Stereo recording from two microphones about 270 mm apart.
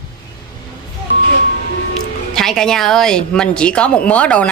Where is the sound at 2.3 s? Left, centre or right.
Centre.